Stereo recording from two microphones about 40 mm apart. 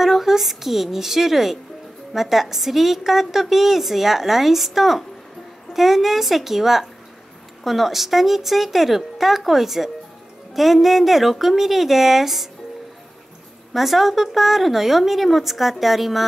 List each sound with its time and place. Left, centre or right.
0.0 s a woman's voice: centre
13.7 s a woman's voice: centre